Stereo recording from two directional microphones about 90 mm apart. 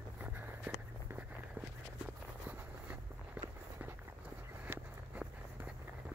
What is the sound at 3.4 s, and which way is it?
Walk, 15° right (ahead or behind).